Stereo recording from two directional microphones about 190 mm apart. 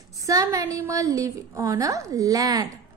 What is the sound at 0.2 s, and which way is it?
A woman's voice, 15° right (ahead or behind).